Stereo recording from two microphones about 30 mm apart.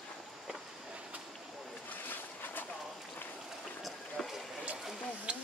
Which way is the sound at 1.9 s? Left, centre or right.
Left.